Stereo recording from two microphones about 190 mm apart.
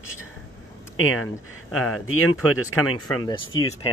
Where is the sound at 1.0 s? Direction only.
90° left.